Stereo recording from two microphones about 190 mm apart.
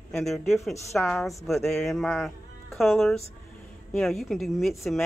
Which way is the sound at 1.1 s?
Centre (ahead or behind).